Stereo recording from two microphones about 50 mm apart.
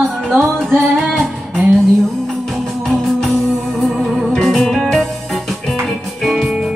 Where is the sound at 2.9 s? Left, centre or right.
Centre.